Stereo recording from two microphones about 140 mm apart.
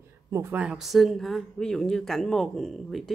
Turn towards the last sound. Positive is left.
turn(degrees=0)  # may be behind; listen again after turning